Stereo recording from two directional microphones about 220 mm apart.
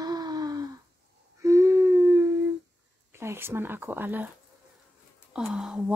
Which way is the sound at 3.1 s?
10° right (ahead or behind).